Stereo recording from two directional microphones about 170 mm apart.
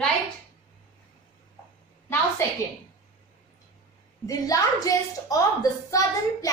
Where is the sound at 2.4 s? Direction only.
15° left (ahead or behind).